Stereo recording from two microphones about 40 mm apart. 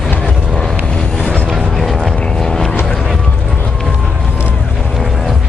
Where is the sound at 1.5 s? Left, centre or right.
Centre.